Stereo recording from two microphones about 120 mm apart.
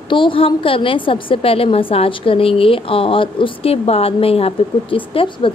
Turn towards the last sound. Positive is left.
turn(degrees=45)  # may be behind; listen again after turning